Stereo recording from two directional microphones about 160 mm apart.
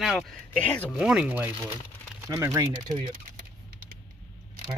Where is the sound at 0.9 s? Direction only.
5° right (ahead or behind).